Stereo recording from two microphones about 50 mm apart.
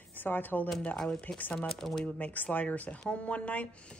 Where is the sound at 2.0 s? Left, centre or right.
Left.